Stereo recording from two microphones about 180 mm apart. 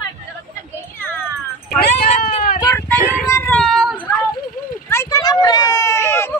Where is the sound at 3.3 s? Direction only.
15° left (ahead or behind).